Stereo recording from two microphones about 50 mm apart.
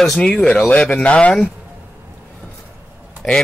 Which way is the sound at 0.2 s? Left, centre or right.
Left.